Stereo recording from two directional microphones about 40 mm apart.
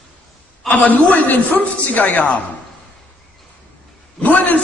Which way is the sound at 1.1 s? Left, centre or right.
Left.